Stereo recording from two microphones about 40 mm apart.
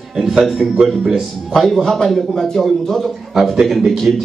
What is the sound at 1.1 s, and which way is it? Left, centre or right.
A man's voice, centre.